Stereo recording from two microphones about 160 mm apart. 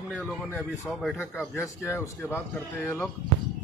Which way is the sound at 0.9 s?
Centre (ahead or behind).